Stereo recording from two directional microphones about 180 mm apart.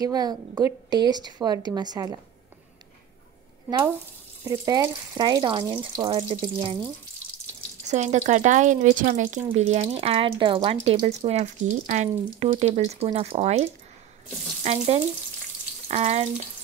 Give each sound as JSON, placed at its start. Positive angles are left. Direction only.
{"t": 0.0, "sound": "a woman's voice", "side_deg": -20}
{"t": 4.5, "sound": "a woman's voice", "side_deg": -20}
{"t": 7.9, "sound": "speech", "side_deg": -40}